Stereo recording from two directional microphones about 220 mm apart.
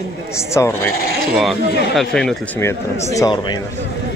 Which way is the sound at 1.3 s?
Centre (ahead or behind).